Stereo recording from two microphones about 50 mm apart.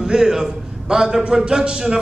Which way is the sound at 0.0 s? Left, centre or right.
Centre.